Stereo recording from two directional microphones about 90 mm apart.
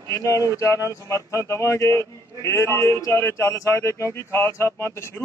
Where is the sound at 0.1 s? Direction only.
35° left (ahead or behind).